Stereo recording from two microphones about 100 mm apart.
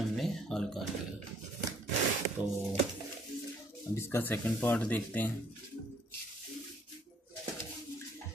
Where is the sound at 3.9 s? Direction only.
25° left (ahead or behind).